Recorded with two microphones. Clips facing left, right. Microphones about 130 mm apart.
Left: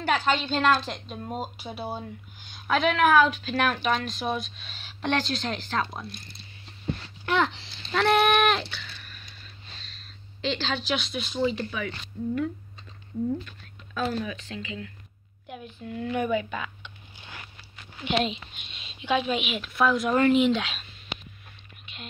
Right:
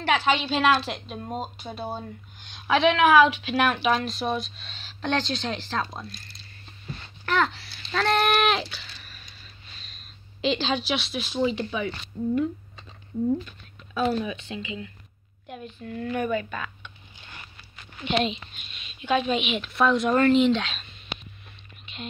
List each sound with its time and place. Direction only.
0.0 s a woman's voice: 5° right (ahead or behind)
7.5 s a child's voice: 20° left (ahead or behind)
7.9 s a sound: 5° left (ahead or behind)
9.8 s a sound: 15° right (ahead or behind)
11.4 s speech: 25° right (ahead or behind)
12.1 s speech: 45° right (ahead or behind)
13.9 s speech: 10° right (ahead or behind)
15.4 s a woman's voice: 10° left (ahead or behind)
18.7 s a sound: 30° left (ahead or behind)
19.0 s a woman's voice: 10° left (ahead or behind)